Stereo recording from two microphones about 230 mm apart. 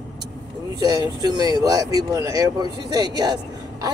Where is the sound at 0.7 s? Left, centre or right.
Centre.